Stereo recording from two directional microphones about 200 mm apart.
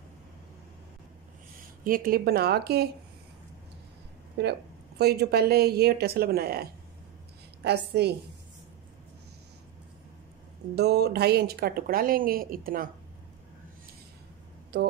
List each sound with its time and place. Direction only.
1.9 s a woman's voice: 45° right (ahead or behind)
4.4 s a woman's voice: 55° right (ahead or behind)
10.8 s a woman's voice: 55° right (ahead or behind)